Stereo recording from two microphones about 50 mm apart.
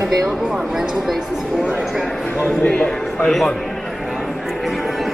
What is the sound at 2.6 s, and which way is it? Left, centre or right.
Speech, left.